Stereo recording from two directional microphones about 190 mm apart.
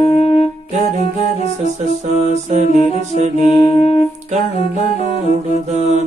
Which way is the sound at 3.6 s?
35° left (ahead or behind).